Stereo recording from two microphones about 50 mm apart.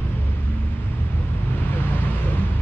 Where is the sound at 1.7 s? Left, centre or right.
Left.